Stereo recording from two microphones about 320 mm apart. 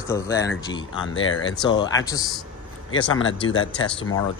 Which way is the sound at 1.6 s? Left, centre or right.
Centre.